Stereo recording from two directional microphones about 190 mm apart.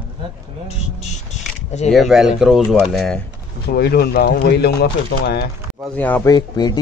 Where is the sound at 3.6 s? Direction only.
55° left (ahead or behind).